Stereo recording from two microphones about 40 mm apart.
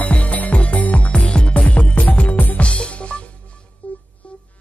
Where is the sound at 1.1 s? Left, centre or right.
Left.